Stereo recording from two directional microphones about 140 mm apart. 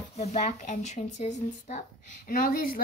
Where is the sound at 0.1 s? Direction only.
55° left (ahead or behind).